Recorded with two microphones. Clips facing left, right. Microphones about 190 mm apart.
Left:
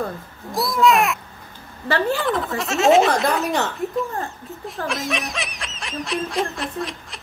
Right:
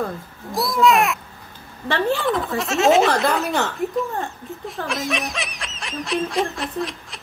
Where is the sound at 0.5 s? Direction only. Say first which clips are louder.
Even; centre (ahead or behind).